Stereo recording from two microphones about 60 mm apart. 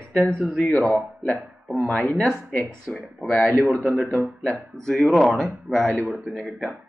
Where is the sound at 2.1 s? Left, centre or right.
Centre.